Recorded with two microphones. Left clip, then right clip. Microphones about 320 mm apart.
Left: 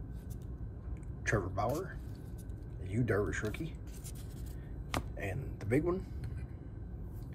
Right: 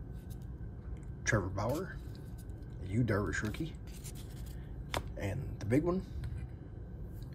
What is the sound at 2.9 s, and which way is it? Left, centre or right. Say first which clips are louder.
Speech: left 1 dB; centre.